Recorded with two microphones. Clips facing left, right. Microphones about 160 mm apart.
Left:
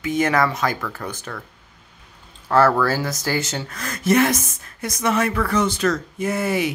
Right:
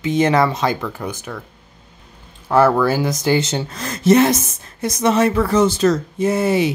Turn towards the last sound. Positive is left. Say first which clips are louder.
# right 5 dB
turn(degrees=-25)  # may be behind; listen again after turning